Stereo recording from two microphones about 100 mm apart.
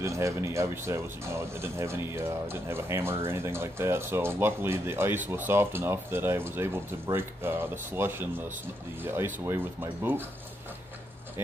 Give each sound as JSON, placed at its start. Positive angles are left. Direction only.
{"t": 0.0, "sound": "speech", "side_deg": -30}